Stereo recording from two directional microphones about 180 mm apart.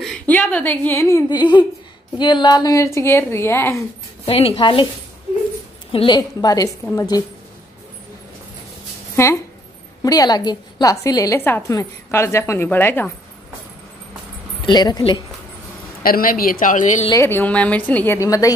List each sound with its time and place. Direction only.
0.0 s a woman's voice: 5° left (ahead or behind)
4.3 s a woman's voice: 30° left (ahead or behind)
5.9 s a woman's voice: 30° left (ahead or behind)
9.1 s a woman's voice: 15° left (ahead or behind)
14.7 s a woman's voice: 20° left (ahead or behind)
16.0 s a woman's voice: 55° left (ahead or behind)
17.1 s a woman's voice: 15° left (ahead or behind)